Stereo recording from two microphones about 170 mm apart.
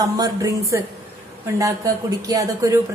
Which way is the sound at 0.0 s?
20° right (ahead or behind).